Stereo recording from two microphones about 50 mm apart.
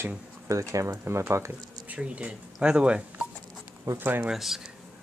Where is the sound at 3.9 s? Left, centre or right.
Right.